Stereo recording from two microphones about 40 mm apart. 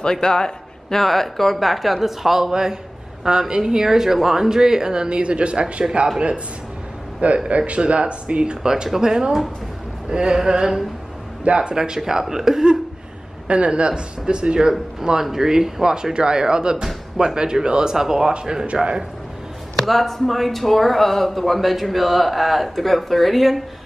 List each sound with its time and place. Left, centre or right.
0.0 s a man's voice: centre
1.0 s speech: centre
2.5 s speech: centre
7.4 s speech: right; by 10.8 s centre
11.4 s speech: right
13.5 s speech: right
19.7 s speech: centre